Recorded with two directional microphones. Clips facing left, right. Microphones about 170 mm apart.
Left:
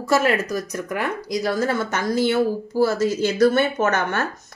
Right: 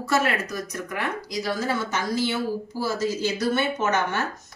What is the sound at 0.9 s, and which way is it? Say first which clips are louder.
A woman's voice: left 6 dB; 50° left (ahead or behind).